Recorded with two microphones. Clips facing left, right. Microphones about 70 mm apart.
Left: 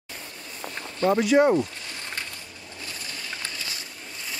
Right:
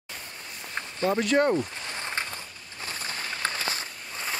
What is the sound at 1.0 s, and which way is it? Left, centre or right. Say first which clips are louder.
Speech: left 4 dB; centre.